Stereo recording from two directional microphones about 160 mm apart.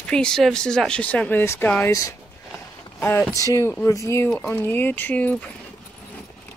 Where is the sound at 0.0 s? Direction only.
5° left (ahead or behind).